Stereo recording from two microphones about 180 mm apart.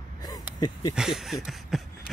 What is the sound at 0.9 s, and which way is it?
Speech, 5° right (ahead or behind).